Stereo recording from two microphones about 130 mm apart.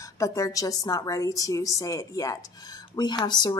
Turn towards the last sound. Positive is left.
turn(degrees=35)  # may be behind; listen again after turning